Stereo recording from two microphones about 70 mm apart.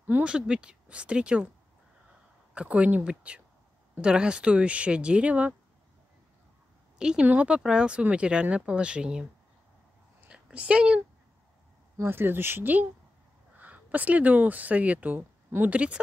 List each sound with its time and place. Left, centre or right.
0.0 s speech: centre
2.5 s speech: centre
7.0 s a woman's voice: centre
10.2 s a sound: centre
12.0 s speech: right